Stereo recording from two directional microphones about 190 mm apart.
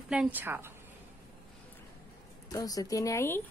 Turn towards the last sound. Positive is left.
turn(degrees=15)  # may be behind; listen again after turning